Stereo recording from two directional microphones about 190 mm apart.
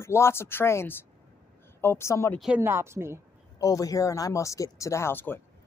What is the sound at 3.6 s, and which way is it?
Speech, 20° left (ahead or behind).